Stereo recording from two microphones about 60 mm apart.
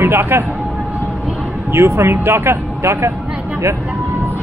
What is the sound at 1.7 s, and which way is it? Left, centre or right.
Speech, right.